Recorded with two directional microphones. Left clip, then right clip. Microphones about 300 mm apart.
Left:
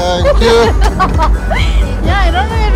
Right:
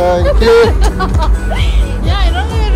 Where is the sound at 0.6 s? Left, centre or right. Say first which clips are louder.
Left 3 dB; left.